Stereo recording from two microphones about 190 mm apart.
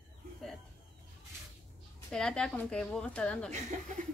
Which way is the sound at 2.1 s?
5° left (ahead or behind).